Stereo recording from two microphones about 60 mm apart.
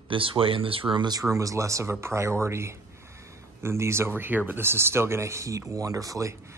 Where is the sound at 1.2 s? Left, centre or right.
Right.